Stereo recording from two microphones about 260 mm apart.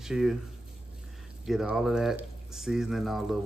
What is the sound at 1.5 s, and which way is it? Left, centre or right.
Speech, centre.